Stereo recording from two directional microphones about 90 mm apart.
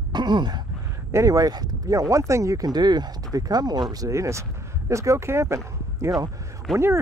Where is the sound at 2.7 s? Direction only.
50° right (ahead or behind).